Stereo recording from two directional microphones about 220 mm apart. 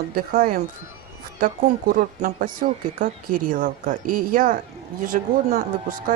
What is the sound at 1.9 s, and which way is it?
Speech, 35° right (ahead or behind).